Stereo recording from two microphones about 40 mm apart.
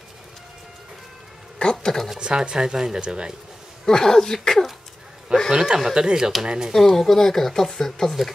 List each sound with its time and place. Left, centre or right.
1.6 s a sound: centre
2.1 s speech: right
3.8 s speech: centre
5.5 s speech: centre
6.7 s speech: centre